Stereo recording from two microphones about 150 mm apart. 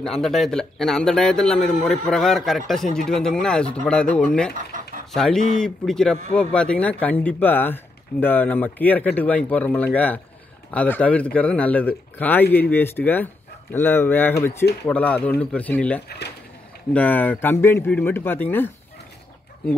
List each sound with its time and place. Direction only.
0.0 s speech: centre (ahead or behind)
4.6 s chicken: 60° right (ahead or behind)
5.1 s speech: 5° left (ahead or behind)